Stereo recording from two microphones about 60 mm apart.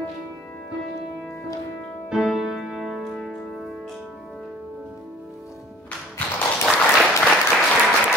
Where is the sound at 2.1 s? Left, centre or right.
Centre.